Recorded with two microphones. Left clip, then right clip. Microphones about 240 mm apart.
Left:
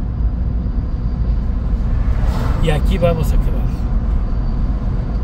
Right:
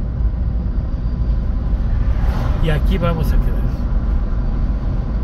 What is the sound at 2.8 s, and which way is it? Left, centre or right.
Speech, centre.